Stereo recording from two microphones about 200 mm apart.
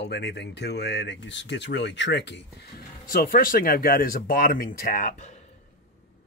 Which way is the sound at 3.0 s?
45° left (ahead or behind).